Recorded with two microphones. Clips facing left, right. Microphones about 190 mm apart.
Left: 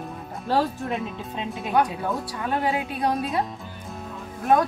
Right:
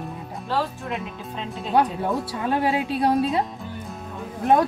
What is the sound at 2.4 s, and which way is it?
Speech, 25° right (ahead or behind).